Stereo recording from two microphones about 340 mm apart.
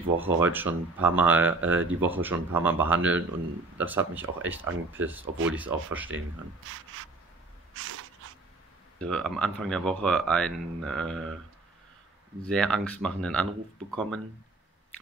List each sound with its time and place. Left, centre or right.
0.2 s speech: centre
6.7 s rub: right
7.7 s a sound: right
8.9 s speech: centre
12.4 s speech: centre